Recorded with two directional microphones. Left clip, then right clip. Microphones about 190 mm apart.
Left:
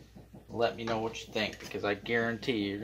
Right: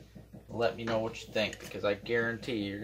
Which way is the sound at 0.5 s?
25° left (ahead or behind).